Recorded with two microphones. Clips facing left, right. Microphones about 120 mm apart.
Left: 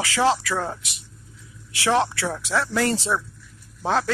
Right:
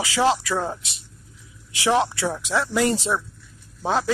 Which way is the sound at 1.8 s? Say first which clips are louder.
Right 1 dB; 15° right (ahead or behind).